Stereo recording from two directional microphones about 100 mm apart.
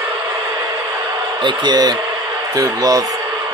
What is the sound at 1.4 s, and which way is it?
Speech, 45° right (ahead or behind).